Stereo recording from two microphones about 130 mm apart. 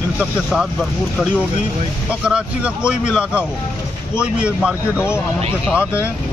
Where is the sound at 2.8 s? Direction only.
5° right (ahead or behind).